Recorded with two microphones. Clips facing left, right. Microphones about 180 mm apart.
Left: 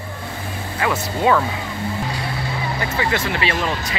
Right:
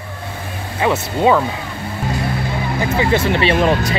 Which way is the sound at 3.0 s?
25° right (ahead or behind).